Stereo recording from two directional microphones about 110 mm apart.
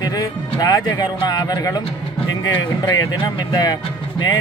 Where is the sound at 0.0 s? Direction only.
35° left (ahead or behind).